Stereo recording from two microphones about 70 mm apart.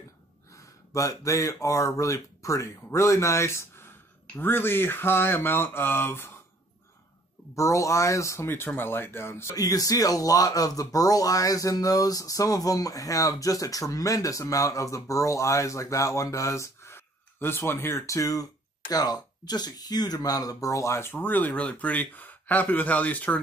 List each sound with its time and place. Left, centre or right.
0.5 s speech: left
7.5 s speech: left
8.5 s speech: left
9.6 s speech: left